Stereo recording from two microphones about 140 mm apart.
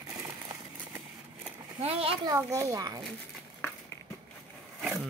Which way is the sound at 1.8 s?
45° right (ahead or behind).